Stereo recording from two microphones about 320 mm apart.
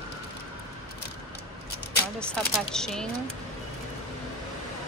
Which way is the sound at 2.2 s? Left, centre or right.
Centre.